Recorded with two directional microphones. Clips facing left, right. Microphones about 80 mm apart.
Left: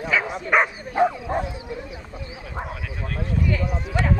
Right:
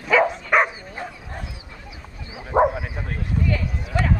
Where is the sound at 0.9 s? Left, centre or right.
Left.